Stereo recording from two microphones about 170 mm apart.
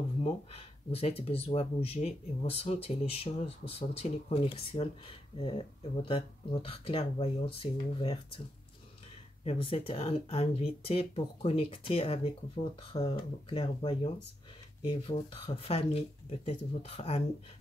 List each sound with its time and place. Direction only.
0.2 s speech: 35° left (ahead or behind)
9.4 s speech: 35° left (ahead or behind)